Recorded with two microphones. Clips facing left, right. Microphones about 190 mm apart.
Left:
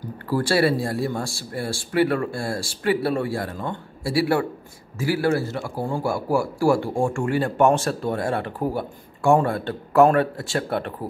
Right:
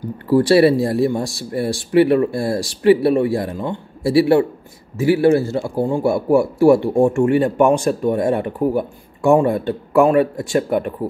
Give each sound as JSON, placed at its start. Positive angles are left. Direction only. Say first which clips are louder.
{"t": 0.3, "sound": "speech", "louder": "right 8 dB", "side_deg": -25}